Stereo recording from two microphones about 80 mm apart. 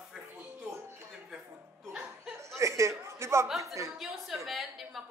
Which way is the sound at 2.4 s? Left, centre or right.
Right.